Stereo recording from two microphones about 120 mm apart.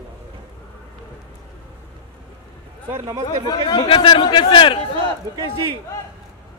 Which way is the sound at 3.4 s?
40° left (ahead or behind).